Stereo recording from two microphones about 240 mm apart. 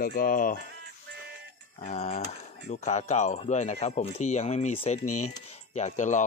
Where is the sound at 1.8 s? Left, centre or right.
Left.